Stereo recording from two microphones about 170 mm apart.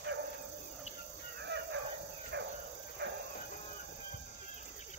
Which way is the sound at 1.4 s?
90° right.